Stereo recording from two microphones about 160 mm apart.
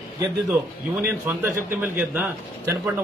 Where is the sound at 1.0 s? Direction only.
15° right (ahead or behind).